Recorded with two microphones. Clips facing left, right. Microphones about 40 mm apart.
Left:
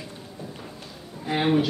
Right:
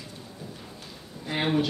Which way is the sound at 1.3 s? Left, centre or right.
Centre.